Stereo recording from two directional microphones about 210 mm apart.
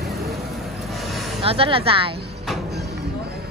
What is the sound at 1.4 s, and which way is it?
Speech, 25° right (ahead or behind).